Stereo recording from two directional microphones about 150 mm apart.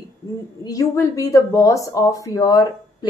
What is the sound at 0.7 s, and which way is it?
Speech, 20° left (ahead or behind).